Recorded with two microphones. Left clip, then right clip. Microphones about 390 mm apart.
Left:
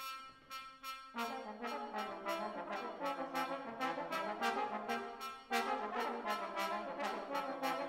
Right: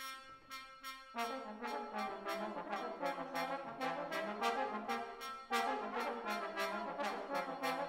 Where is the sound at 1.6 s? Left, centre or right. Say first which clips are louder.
Even; left.